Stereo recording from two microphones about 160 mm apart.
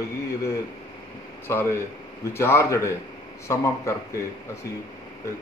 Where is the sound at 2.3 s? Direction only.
15° left (ahead or behind).